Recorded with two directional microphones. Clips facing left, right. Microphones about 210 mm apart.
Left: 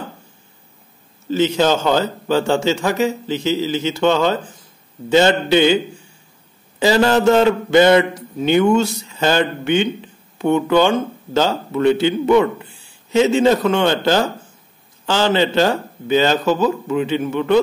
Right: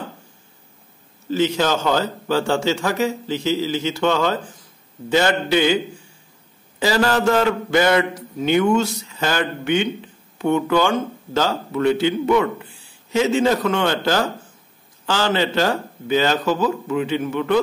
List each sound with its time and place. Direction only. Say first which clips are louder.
1.3 s a man's voice: left 3 dB; 25° left (ahead or behind)
6.8 s a man's voice: left 4 dB; 25° left (ahead or behind)